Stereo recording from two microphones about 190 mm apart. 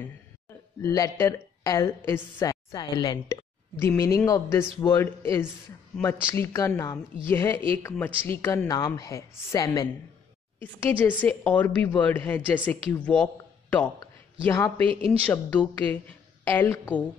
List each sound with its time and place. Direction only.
0.8 s a woman's voice: 15° left (ahead or behind)
14.9 s speech: 30° right (ahead or behind)
15.2 s speech: 10° left (ahead or behind)